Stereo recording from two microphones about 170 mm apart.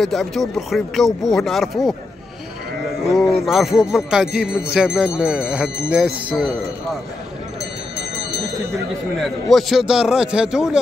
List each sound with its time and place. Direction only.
0.0 s speech: centre (ahead or behind)
3.1 s speech: centre (ahead or behind)
9.2 s speech: centre (ahead or behind)